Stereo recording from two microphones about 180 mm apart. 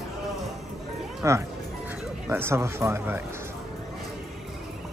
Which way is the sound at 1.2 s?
15° right (ahead or behind).